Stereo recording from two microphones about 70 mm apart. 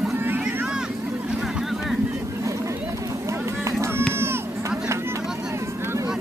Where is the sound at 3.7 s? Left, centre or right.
Right.